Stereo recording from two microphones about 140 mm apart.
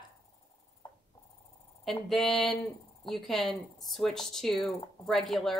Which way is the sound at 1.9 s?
Centre (ahead or behind).